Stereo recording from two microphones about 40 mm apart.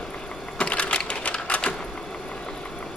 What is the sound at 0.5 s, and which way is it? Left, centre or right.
Typing, left.